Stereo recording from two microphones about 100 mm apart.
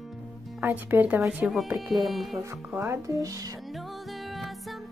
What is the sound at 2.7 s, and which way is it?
Speech, 25° right (ahead or behind).